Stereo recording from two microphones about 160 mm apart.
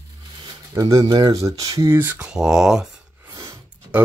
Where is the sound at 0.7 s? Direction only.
20° right (ahead or behind); by 2.9 s 5° right (ahead or behind).